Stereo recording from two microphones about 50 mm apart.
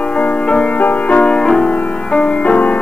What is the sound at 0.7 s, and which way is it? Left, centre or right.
Music, left.